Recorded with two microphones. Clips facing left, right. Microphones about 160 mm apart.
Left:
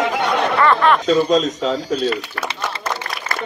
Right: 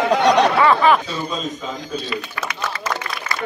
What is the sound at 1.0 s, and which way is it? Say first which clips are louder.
Speech: left 11 dB; 85° left.